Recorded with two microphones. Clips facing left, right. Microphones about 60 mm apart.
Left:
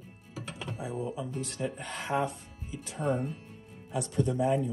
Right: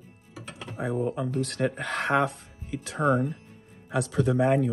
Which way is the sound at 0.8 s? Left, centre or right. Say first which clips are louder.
Right 8 dB; right.